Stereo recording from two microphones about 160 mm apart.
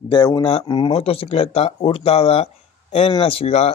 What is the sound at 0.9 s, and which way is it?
Speech, 35° left (ahead or behind).